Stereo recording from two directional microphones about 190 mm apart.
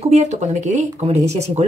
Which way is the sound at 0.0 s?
35° right (ahead or behind).